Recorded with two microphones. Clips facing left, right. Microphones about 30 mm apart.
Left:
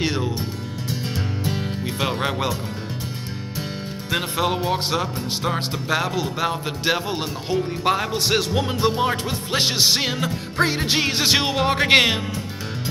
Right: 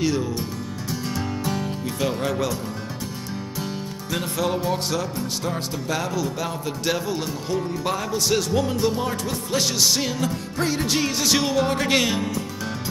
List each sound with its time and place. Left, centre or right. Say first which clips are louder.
0.0 s music: even; left
4.1 s music: left 2 dB; left